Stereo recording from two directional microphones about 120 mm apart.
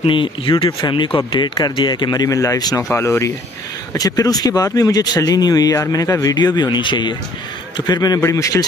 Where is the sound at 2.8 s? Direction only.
20° left (ahead or behind).